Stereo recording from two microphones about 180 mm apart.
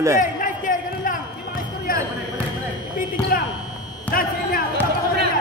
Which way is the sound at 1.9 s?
50° left (ahead or behind).